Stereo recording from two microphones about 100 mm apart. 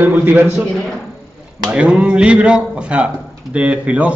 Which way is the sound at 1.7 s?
10° right (ahead or behind).